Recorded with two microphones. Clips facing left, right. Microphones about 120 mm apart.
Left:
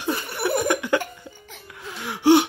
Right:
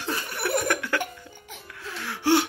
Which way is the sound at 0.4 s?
15° left (ahead or behind).